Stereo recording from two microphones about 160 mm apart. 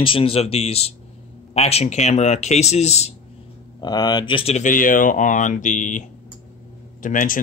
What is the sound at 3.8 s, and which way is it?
Speech, 25° left (ahead or behind).